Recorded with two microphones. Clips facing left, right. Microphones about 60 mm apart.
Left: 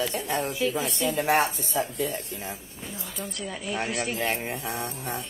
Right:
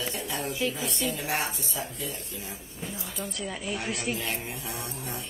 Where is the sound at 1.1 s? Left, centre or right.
Left.